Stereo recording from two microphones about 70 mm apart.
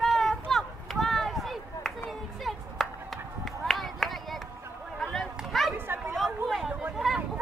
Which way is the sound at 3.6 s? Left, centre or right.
Centre.